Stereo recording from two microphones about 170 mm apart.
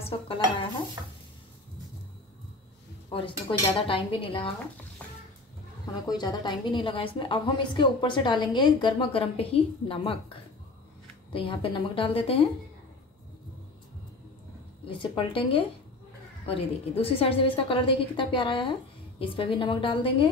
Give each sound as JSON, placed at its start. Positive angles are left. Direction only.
{"t": 0.0, "sound": "dishes", "side_deg": 30}
{"t": 3.1, "sound": "speech", "side_deg": 30}
{"t": 6.0, "sound": "a woman's voice", "side_deg": 25}
{"t": 11.3, "sound": "a woman's voice", "side_deg": 30}
{"t": 14.9, "sound": "a woman's voice", "side_deg": 30}